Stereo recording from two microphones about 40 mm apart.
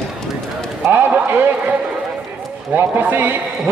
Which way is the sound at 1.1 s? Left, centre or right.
Right.